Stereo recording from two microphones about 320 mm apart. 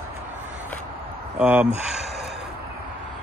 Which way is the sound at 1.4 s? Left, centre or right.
Centre.